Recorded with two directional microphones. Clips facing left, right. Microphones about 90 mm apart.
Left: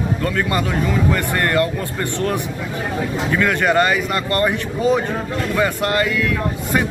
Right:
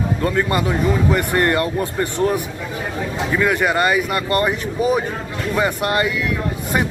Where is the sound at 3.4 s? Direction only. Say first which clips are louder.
Left 1 dB; 10° right (ahead or behind).